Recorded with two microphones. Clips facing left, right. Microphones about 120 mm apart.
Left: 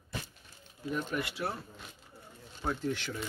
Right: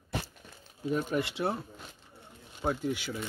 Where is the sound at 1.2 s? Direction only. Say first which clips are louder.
Right 5 dB; 25° right (ahead or behind).